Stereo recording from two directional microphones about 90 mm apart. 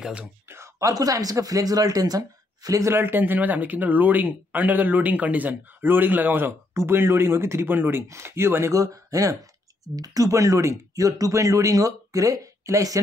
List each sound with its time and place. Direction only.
0.0 s speech: 10° right (ahead or behind)
0.5 s speech: 30° right (ahead or behind)